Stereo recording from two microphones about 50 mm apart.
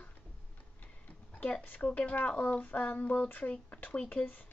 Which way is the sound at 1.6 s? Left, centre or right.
Left.